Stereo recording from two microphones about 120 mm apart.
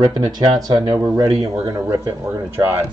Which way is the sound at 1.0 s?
30° right (ahead or behind).